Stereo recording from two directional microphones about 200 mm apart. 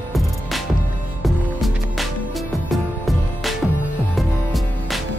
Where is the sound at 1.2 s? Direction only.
Centre (ahead or behind).